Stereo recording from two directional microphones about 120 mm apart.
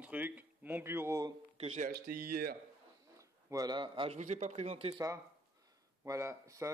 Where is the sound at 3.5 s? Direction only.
35° right (ahead or behind).